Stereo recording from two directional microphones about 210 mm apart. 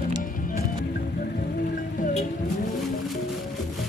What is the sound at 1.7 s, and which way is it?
Music, 40° left (ahead or behind).